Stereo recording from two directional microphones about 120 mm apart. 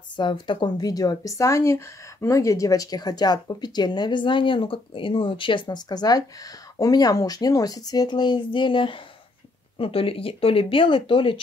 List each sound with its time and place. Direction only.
0.1 s speech: 40° left (ahead or behind)